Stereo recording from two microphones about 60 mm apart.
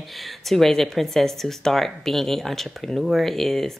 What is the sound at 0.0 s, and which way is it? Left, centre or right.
Speech, centre.